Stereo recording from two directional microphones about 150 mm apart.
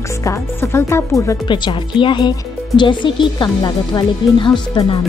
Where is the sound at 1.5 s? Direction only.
30° left (ahead or behind).